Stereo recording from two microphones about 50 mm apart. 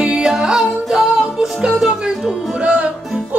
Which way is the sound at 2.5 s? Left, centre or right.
Right.